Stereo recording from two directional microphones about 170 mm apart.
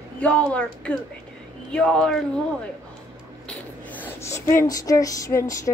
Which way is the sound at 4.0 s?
15° left (ahead or behind).